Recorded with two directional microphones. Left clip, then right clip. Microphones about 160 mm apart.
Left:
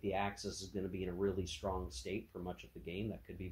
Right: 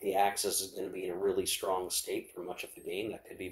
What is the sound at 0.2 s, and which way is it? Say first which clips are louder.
Speech: right 11 dB; 35° right (ahead or behind).